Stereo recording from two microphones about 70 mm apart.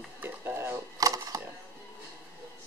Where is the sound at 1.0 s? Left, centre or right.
Right.